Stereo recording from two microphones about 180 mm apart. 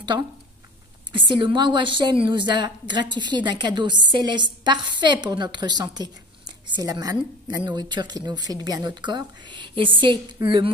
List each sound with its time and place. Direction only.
1.1 s a woman's voice: 25° right (ahead or behind)